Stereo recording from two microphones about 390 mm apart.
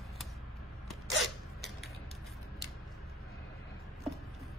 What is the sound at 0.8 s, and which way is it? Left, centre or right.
Creak, centre.